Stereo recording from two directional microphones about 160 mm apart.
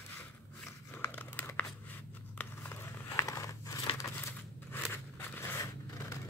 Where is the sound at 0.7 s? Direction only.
15° left (ahead or behind).